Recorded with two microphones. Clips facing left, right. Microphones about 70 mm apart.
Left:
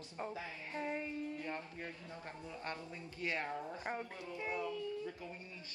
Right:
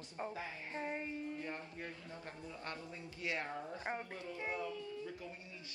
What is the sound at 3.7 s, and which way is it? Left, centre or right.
Speech, right.